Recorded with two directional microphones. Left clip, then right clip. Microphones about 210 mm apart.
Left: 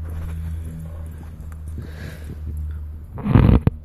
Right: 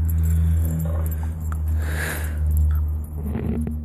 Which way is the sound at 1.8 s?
20° right (ahead or behind).